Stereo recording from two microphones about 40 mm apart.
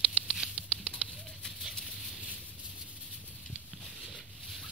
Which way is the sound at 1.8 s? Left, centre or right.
Centre.